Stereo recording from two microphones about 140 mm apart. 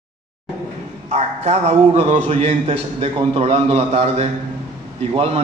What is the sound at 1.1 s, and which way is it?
A man's voice, 50° right (ahead or behind).